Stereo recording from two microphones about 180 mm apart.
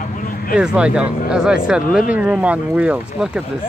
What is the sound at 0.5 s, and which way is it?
Speech, 5° right (ahead or behind).